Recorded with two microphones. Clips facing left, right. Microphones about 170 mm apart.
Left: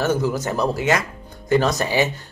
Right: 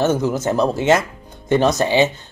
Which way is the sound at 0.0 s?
20° right (ahead or behind).